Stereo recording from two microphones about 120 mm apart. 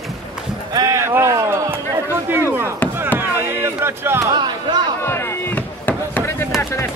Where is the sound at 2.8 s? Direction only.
15° left (ahead or behind).